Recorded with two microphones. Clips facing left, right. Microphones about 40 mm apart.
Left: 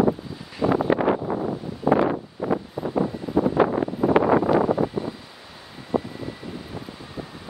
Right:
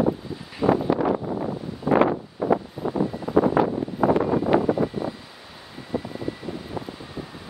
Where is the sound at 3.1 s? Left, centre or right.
Centre.